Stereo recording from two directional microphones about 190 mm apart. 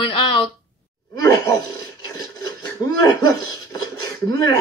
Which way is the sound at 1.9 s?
20° left (ahead or behind).